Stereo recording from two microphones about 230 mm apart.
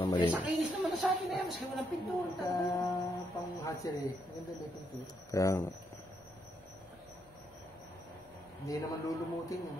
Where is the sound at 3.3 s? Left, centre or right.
Centre.